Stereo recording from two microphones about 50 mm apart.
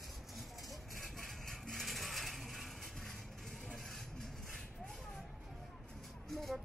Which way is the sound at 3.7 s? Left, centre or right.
Centre.